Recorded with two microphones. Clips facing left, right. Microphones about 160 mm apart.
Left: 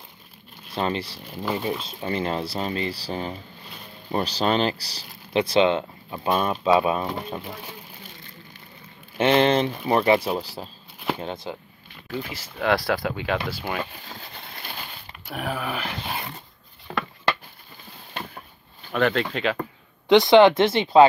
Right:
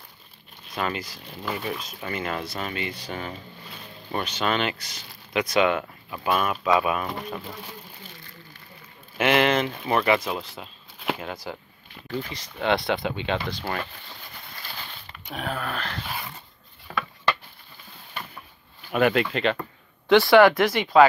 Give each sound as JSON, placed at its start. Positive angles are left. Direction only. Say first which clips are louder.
{"t": 0.7, "sound": "speech", "louder": "left 3 dB", "side_deg": 30}
{"t": 9.2, "sound": "speech", "louder": "left 2 dB", "side_deg": 30}
{"t": 12.1, "sound": "speech", "louder": "even", "side_deg": 5}
{"t": 15.2, "sound": "dog", "louder": "left 2 dB", "side_deg": 10}
{"t": 18.9, "sound": "speech", "louder": "right 1 dB", "side_deg": -10}
{"t": 20.1, "sound": "speech", "louder": "left 1 dB", "side_deg": 20}